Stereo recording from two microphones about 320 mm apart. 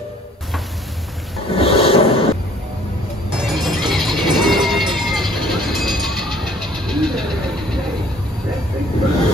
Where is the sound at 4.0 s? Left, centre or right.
Centre.